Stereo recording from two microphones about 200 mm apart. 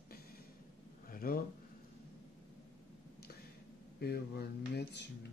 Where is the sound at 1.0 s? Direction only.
45° left (ahead or behind).